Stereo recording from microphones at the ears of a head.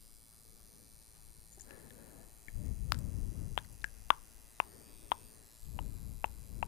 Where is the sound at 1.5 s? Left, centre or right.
Left.